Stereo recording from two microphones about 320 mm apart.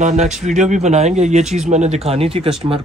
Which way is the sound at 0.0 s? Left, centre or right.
Right.